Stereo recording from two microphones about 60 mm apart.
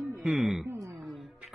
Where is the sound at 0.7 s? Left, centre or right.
Right.